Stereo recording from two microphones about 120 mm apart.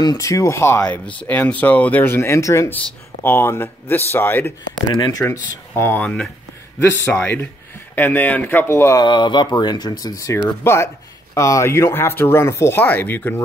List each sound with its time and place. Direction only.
0.0 s speech: 30° left (ahead or behind)
4.8 s speech: 40° left (ahead or behind)
5.2 s speech: 20° left (ahead or behind)
9.0 s speech: 40° left (ahead or behind); by 13.4 s 15° left (ahead or behind)